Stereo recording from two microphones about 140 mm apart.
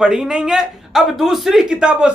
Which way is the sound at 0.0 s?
5° right (ahead or behind).